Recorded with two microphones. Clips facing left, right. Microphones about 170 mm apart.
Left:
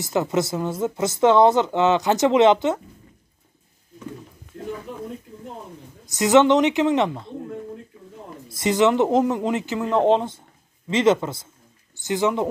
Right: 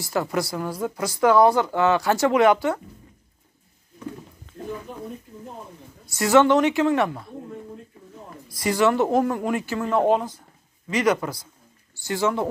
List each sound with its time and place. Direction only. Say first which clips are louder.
0.0 s speech: left 3 dB; 20° left (ahead or behind)
6.0 s speech: left 1 dB; 20° left (ahead or behind)
8.5 s speech: left 2 dB; 20° left (ahead or behind)